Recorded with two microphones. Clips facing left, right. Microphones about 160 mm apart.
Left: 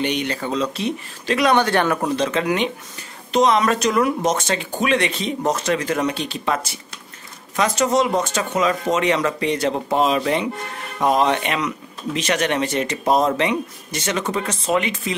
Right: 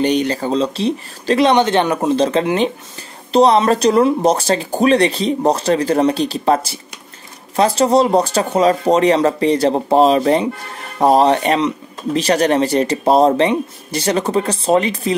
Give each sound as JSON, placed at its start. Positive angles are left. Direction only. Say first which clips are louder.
{"t": 0.0, "sound": "speech", "louder": "right 7 dB", "side_deg": -35}
{"t": 1.5, "sound": "speech", "louder": "right 4 dB", "side_deg": -20}
{"t": 2.1, "sound": "speech", "louder": "right 5 dB", "side_deg": -30}